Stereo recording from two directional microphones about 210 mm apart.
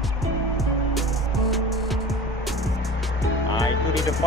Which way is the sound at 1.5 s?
Centre (ahead or behind).